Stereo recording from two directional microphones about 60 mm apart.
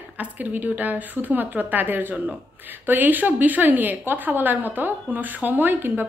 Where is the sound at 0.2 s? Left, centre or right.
Right.